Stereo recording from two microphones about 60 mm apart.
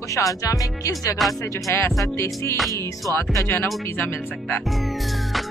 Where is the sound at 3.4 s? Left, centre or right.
Left.